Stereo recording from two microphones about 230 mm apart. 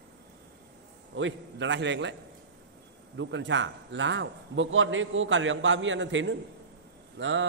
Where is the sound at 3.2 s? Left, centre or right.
Right.